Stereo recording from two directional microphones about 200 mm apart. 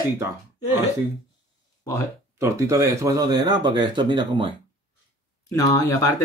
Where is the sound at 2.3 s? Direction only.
15° right (ahead or behind).